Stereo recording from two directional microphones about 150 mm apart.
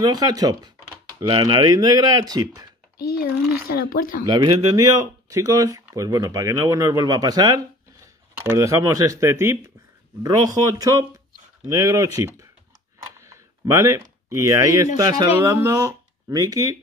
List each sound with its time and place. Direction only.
0.0 s speech: 25° right (ahead or behind)
3.0 s a sound: 90° left
3.6 s speech: 90° left
4.3 s speech: 30° right (ahead or behind)
13.0 s a sound: 20° right (ahead or behind)
15.0 s speech: 25° right (ahead or behind)